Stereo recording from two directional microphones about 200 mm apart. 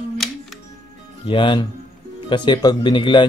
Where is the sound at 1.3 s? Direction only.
25° left (ahead or behind).